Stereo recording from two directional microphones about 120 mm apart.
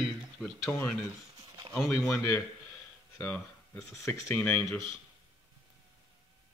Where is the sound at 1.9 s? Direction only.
20° left (ahead or behind).